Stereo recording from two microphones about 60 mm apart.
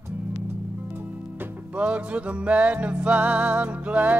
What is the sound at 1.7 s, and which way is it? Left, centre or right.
Music, right.